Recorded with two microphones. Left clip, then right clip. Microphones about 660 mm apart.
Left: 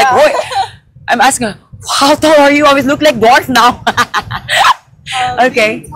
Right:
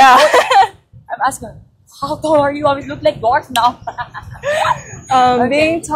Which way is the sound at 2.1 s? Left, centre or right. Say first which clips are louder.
Left 7 dB; left.